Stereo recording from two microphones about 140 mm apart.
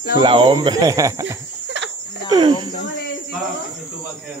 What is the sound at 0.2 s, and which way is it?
Speech, 35° right (ahead or behind).